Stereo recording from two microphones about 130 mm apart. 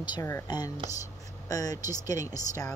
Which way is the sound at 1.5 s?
30° left (ahead or behind).